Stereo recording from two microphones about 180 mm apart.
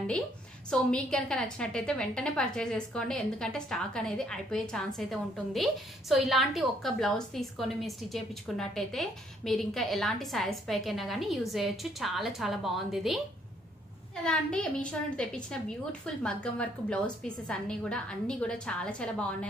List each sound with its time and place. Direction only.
0.7 s a woman's voice: 5° left (ahead or behind)
14.2 s a woman's voice: 5° left (ahead or behind)